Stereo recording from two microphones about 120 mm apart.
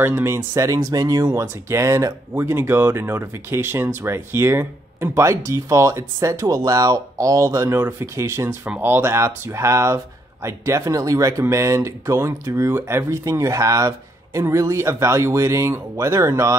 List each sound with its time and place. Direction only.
0.0 s speech: 20° right (ahead or behind)